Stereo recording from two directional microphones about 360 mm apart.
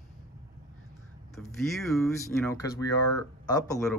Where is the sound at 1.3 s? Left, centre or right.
Centre.